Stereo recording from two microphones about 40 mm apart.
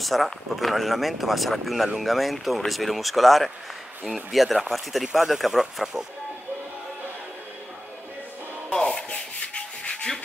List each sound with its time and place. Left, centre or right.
0.0 s speech: centre
8.7 s rub: centre
9.1 s rub: left